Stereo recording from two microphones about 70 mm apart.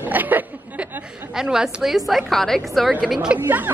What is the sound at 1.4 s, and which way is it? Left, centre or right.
A woman's voice, centre.